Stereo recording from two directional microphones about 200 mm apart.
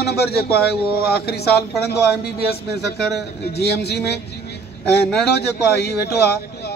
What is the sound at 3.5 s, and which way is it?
Speech, 55° left (ahead or behind).